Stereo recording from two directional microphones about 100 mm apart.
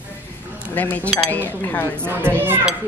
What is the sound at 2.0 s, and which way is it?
Speech, 20° right (ahead or behind).